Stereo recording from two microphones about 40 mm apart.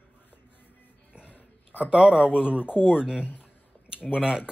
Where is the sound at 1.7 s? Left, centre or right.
Right.